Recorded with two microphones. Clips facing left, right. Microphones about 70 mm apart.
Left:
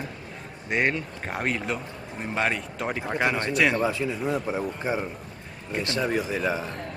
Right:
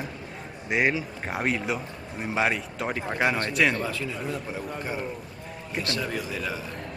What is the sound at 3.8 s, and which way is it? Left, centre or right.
A man's voice, left.